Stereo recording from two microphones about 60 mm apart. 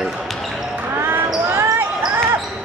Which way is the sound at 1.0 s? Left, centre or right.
Right.